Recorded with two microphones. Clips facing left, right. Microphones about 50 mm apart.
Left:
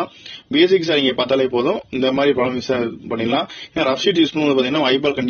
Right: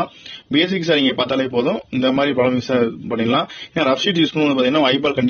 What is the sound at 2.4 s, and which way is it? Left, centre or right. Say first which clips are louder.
Speech: right 3 dB; right.